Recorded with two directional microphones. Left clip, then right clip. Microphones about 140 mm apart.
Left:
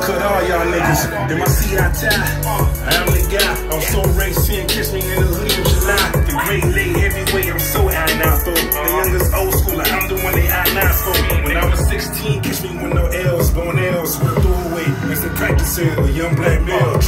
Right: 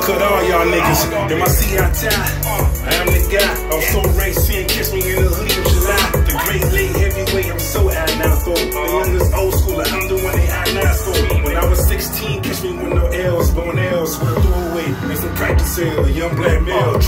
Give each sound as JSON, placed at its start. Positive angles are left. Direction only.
{"t": 0.0, "sound": "speech", "side_deg": -15}
{"t": 2.9, "sound": "music", "side_deg": 10}
{"t": 5.5, "sound": "music", "side_deg": 0}
{"t": 8.0, "sound": "music", "side_deg": 5}